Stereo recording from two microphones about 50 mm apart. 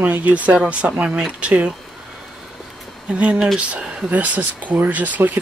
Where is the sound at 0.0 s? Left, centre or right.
Right.